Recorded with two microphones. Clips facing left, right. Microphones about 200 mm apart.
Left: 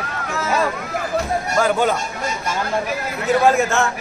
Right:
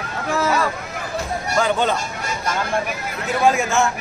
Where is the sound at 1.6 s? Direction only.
5° left (ahead or behind).